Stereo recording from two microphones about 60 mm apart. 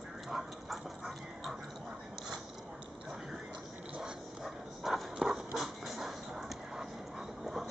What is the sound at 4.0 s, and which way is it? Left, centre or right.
Dog, centre.